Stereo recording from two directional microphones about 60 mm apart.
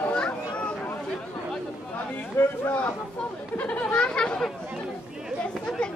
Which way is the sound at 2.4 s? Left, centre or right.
Left.